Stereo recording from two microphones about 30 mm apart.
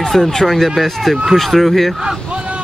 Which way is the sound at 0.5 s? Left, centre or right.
Centre.